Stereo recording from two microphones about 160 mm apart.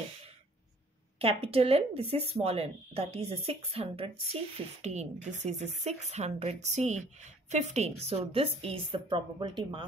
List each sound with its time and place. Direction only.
1.2 s speech: 40° right (ahead or behind)